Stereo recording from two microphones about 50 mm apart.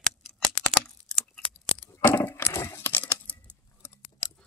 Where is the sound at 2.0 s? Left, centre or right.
Left.